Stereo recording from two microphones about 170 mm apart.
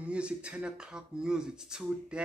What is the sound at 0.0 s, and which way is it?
Speech, 5° right (ahead or behind).